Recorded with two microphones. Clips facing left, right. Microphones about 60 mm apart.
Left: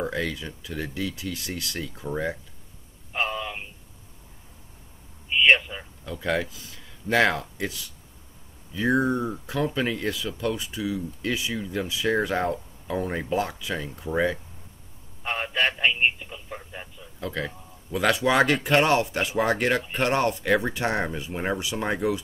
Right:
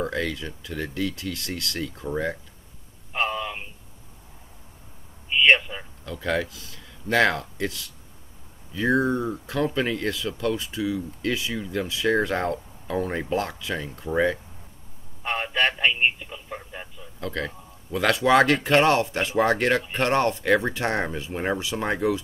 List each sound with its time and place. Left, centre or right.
0.0 s speech: centre
3.1 s a sound: centre
5.3 s a sound: centre
6.0 s speech: centre
6.4 s a man's voice: left; by 16.9 s centre
17.2 s speech: centre